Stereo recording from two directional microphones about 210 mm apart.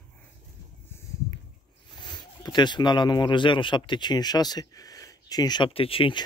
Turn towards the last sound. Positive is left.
turn(degrees=25)  # may be behind; listen again after turning